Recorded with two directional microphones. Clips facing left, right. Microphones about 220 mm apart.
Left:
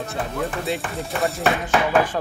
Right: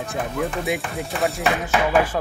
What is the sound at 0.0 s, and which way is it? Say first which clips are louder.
Speech: right 1 dB; 15° right (ahead or behind).